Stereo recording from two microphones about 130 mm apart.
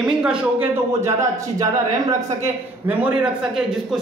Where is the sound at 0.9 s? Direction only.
25° right (ahead or behind).